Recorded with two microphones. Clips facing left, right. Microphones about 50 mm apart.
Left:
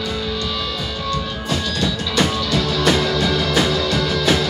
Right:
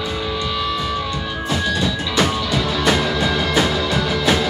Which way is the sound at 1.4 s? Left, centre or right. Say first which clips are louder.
Right 2 dB; centre.